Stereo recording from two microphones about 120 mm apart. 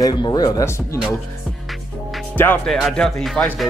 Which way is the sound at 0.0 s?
35° left (ahead or behind).